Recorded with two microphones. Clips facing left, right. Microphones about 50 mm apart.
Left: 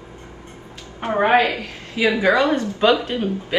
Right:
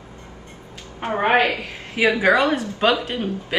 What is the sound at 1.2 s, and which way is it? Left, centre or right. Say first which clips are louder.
Speech: left 2 dB; right.